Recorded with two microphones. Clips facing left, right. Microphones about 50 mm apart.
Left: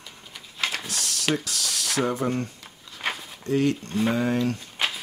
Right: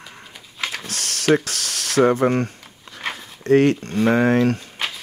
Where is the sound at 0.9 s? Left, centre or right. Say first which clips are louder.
Right 8 dB; right.